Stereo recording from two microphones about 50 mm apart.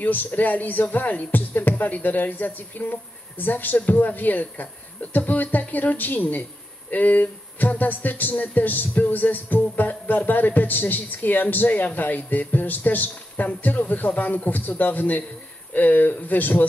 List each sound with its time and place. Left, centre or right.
0.0 s speech: left